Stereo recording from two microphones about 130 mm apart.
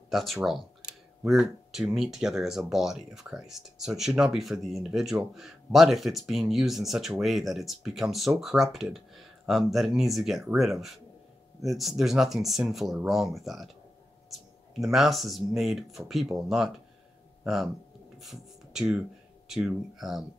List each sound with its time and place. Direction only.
0.1 s speech: centre (ahead or behind)
17.4 s a sound: centre (ahead or behind)
18.2 s speech: 5° right (ahead or behind)